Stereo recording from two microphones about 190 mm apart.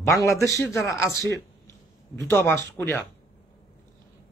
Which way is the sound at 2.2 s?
10° left (ahead or behind).